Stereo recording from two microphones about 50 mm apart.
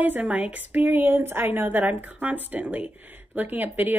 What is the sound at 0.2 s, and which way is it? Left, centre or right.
A woman's voice, right.